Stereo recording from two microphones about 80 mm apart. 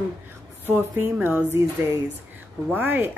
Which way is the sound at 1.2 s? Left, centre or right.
Right.